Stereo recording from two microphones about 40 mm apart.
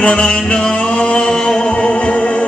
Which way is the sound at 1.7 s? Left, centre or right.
Left.